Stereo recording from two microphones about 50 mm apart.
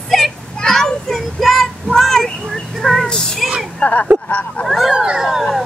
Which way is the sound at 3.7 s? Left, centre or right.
Left.